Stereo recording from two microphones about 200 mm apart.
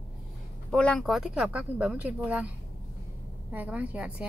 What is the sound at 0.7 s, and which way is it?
Speech, 5° left (ahead or behind).